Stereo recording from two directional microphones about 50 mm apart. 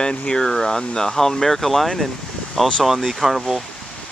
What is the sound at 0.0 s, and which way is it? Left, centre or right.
Speech, centre.